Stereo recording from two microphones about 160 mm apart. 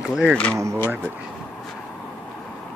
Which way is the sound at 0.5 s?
15° right (ahead or behind).